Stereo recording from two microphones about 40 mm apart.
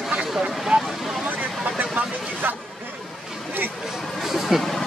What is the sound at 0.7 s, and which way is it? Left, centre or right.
Vehicle, right.